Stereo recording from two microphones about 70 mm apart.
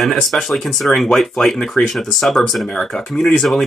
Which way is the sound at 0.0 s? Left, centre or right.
Centre.